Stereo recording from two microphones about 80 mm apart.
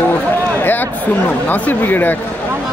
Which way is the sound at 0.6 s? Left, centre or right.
Left.